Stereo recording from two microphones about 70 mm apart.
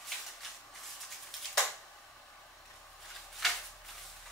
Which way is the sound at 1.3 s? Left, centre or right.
Centre.